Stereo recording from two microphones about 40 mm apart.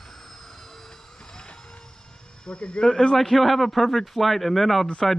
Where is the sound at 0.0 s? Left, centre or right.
Centre.